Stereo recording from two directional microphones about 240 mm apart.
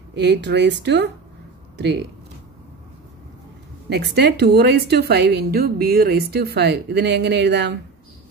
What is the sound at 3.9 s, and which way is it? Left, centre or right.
Speech, right.